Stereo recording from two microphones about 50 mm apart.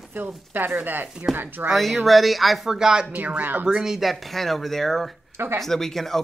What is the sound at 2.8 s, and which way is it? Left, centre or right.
Speech, centre.